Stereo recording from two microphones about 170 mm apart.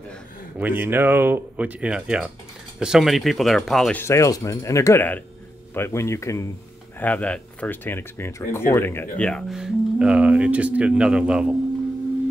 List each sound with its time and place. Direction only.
0.6 s speech: 10° right (ahead or behind)
4.0 s speech: 15° left (ahead or behind)
9.2 s speech: centre (ahead or behind)